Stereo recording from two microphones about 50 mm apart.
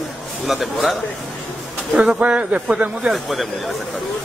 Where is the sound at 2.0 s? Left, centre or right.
Right.